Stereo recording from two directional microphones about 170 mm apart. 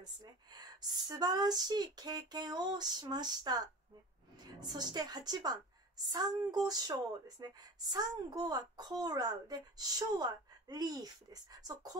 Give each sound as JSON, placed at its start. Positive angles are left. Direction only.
{"t": 0.2, "sound": "speech", "side_deg": -25}